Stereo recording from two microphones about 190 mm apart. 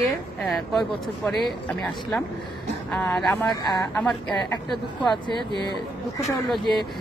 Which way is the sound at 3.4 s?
20° left (ahead or behind).